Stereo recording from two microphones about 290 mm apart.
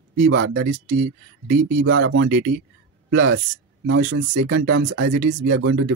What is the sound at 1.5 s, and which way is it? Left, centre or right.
Speech, right.